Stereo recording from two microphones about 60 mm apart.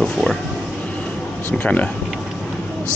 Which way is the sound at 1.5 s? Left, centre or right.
Left.